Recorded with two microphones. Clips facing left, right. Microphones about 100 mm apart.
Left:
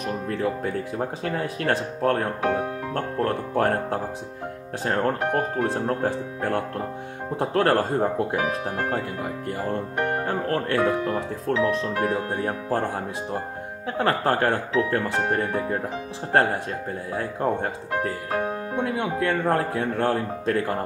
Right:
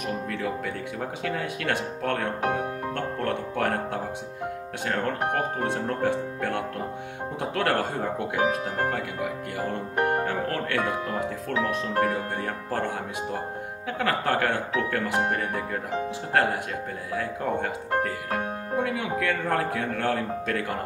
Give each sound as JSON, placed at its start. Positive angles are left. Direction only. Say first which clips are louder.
{"t": 0.0, "sound": "speech", "louder": "left 3 dB", "side_deg": 35}
{"t": 11.5, "sound": "speech", "louder": "left 5 dB", "side_deg": -35}
{"t": 12.0, "sound": "speech", "louder": "left 1 dB", "side_deg": 30}